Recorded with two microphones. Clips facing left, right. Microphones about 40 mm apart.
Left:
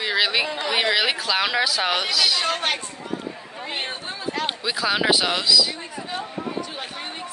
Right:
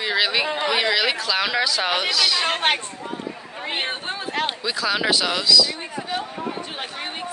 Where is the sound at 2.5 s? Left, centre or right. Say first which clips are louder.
Right 3 dB; right.